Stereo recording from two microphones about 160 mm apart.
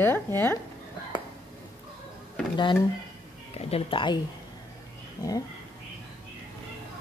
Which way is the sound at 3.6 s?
40° left (ahead or behind).